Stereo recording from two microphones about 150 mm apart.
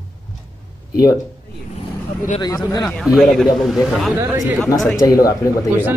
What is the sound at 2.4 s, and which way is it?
Speech, 25° left (ahead or behind).